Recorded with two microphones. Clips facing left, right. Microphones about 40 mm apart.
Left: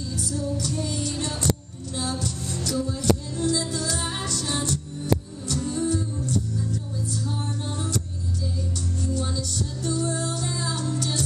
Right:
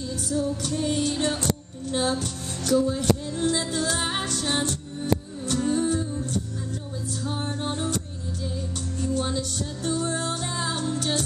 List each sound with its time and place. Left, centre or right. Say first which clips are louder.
0.2 s music: right 2 dB; right
9.0 s music: right 4 dB; right